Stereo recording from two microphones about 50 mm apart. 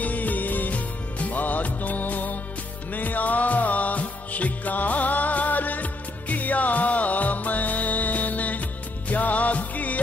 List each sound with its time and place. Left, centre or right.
0.0 s music: left